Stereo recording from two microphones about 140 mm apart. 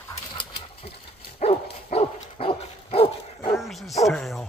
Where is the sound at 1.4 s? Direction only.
50° left (ahead or behind).